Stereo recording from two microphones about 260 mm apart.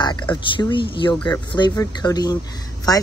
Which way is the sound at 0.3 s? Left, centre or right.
Centre.